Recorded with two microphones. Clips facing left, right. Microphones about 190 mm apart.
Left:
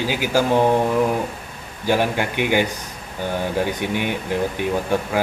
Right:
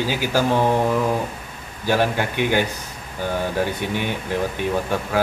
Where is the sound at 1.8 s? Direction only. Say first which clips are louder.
Even; 15° left (ahead or behind).